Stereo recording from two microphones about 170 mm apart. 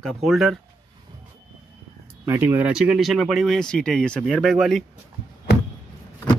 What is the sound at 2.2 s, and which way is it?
Speech, 10° right (ahead or behind).